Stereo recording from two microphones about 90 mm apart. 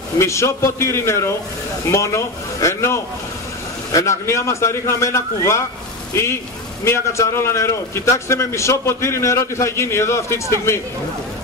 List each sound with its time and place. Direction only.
0.2 s a man's voice: 30° left (ahead or behind)
6.8 s a man's voice: 30° left (ahead or behind)